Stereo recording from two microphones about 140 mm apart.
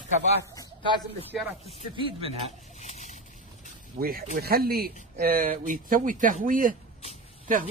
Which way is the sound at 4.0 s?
90° right.